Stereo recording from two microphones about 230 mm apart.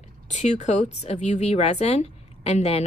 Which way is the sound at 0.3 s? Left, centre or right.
Left.